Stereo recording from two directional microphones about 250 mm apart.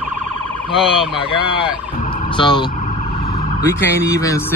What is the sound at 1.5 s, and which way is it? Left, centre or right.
Fowl, centre.